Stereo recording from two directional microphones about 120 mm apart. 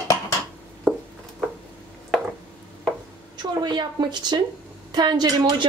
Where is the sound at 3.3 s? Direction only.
35° right (ahead or behind).